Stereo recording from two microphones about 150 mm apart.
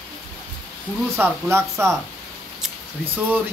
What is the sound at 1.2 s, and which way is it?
Speech, 15° right (ahead or behind).